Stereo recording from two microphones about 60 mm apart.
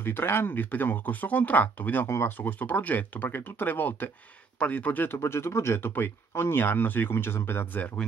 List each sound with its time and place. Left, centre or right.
0.0 s speech: left
2.0 s speech: left
2.3 s speech: left
5.2 s speech: left